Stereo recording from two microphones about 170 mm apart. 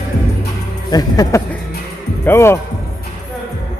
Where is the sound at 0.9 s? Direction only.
20° left (ahead or behind).